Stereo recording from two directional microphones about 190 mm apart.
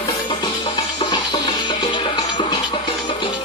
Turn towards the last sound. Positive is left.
turn(degrees=25)  # may be behind; listen again after turning